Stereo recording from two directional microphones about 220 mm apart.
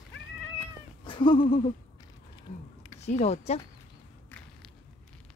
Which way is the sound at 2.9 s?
30° left (ahead or behind).